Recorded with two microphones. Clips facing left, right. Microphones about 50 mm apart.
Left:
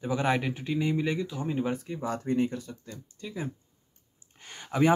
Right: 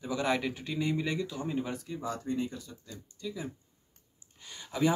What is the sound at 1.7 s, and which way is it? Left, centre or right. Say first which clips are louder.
Speech: left 4 dB; left.